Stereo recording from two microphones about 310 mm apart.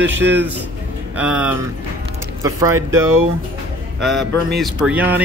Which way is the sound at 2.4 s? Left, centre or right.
Centre.